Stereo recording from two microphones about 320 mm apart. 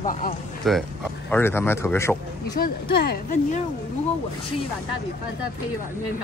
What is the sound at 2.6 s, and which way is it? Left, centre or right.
Speech, left.